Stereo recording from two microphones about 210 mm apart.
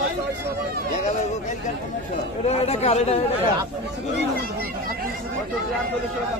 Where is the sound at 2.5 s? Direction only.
30° left (ahead or behind).